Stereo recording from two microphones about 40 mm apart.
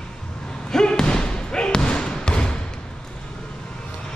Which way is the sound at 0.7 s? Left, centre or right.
Centre.